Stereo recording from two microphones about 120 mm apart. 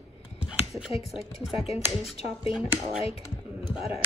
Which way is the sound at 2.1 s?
55° left (ahead or behind).